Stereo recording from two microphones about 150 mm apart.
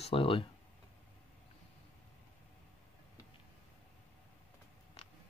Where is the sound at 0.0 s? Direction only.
40° left (ahead or behind).